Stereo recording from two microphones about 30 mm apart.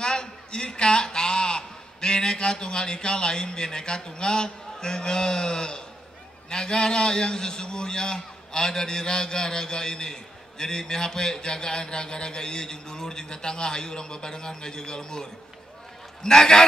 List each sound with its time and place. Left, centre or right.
0.0 s a man's voice: left